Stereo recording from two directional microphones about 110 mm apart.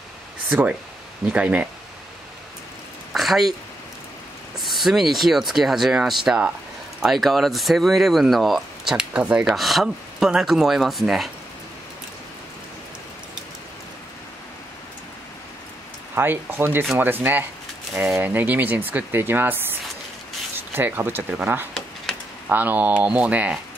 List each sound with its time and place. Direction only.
0.5 s speech: 15° right (ahead or behind)
3.1 s a sound: centre (ahead or behind)
4.6 s speech: centre (ahead or behind)
16.2 s speech: 20° right (ahead or behind)
20.7 s speech: 20° right (ahead or behind)